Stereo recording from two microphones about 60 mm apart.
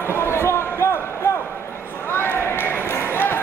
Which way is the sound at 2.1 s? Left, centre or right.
Left.